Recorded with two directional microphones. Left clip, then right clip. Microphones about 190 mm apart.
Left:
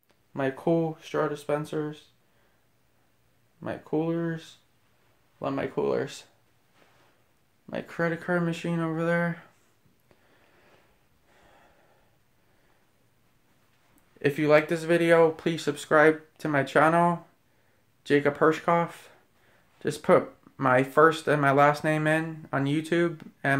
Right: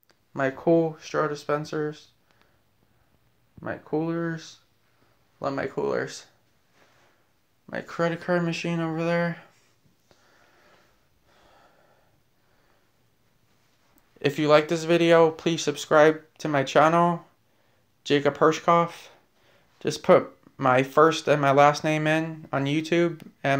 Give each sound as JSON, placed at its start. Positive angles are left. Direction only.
{"t": 0.3, "sound": "speech", "side_deg": 0}
{"t": 3.6, "sound": "speech", "side_deg": 5}
{"t": 7.6, "sound": "speech", "side_deg": 10}
{"t": 8.0, "sound": "speech", "side_deg": 0}
{"t": 14.2, "sound": "speech", "side_deg": 0}